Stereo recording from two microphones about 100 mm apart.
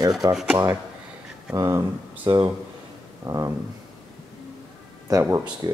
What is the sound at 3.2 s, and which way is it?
Speech, 35° right (ahead or behind).